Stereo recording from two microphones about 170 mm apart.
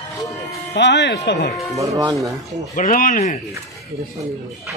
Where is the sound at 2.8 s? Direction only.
55° left (ahead or behind).